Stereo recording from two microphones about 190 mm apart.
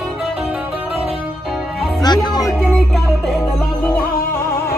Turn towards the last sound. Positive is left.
turn(degrees=10)  # may be behind; listen again after turning